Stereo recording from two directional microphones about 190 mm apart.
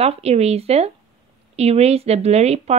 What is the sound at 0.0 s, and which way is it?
Speech, 30° right (ahead or behind).